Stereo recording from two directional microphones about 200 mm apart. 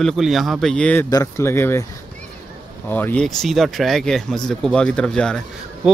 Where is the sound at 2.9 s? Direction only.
5° left (ahead or behind).